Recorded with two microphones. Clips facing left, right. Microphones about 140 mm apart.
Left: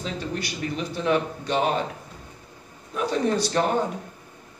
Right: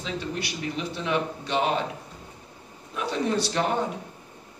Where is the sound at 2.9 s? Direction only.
45° left (ahead or behind).